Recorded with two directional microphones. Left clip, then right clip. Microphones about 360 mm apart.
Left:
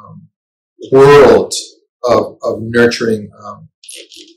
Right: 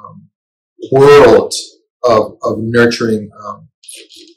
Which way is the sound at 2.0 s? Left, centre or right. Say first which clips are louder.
Right 1 dB; centre.